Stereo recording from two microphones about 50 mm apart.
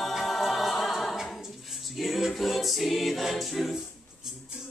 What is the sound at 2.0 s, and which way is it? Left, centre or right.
Music, centre.